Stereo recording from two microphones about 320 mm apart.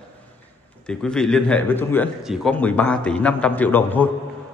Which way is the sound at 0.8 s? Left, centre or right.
Centre.